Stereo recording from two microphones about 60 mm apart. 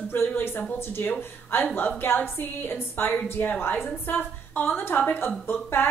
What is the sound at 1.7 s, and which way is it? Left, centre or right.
A woman's voice, left.